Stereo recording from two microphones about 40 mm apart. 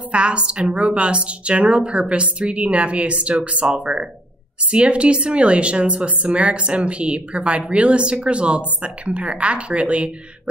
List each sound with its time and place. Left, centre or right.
0.1 s a woman's voice: right